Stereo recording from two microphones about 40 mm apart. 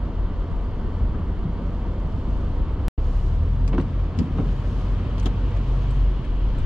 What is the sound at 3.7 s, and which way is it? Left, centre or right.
Vehicle, right.